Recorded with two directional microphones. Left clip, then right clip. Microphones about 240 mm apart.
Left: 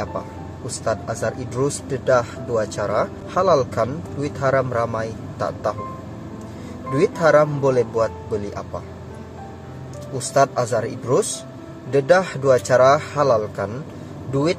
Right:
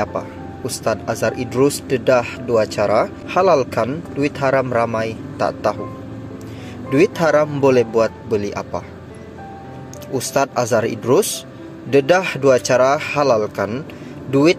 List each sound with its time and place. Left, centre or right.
0.8 s speech: centre
6.9 s speech: centre
10.1 s speech: centre